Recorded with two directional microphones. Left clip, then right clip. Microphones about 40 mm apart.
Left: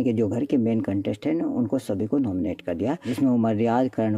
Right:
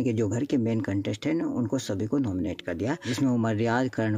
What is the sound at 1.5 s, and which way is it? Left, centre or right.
Speech, right.